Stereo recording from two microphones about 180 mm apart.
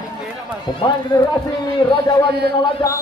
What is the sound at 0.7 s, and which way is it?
Speech, 25° left (ahead or behind).